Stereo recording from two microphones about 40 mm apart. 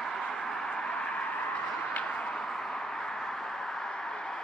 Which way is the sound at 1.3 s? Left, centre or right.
Left.